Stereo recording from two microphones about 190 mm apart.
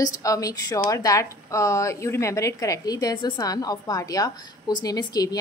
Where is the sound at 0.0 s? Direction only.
15° left (ahead or behind).